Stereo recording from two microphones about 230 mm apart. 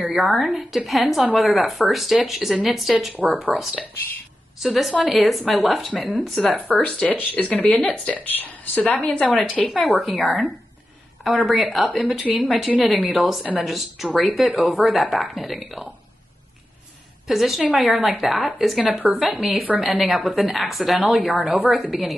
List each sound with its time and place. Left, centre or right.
0.0 s speech: centre
17.3 s speech: centre